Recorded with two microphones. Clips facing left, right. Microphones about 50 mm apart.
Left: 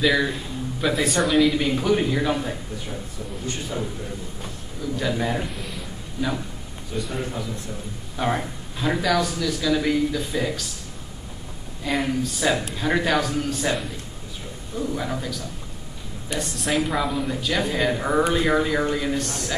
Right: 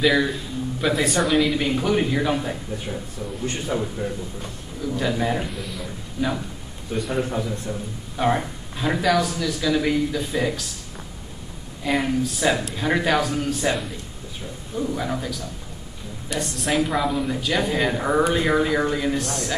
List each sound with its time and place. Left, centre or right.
0.0 s speech: centre
3.7 s a man's voice: right
4.9 s a man's voice: centre
7.1 s a woman's voice: centre
11.8 s a woman's voice: centre